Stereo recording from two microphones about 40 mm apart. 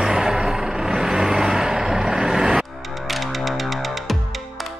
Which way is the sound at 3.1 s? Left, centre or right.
Centre.